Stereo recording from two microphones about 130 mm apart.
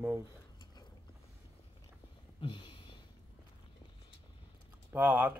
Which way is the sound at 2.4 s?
40° left (ahead or behind).